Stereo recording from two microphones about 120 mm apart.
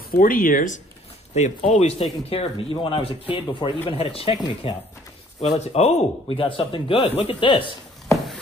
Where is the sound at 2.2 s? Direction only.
50° left (ahead or behind).